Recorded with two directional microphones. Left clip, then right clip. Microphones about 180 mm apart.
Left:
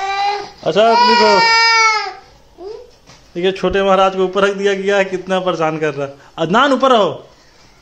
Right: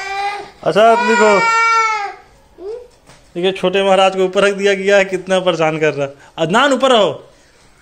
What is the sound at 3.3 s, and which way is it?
A man's voice, centre (ahead or behind).